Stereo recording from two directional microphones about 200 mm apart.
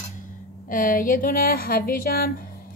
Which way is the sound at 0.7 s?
45° left (ahead or behind).